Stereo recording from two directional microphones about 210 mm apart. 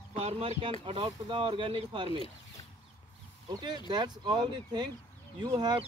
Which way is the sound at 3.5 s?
20° right (ahead or behind).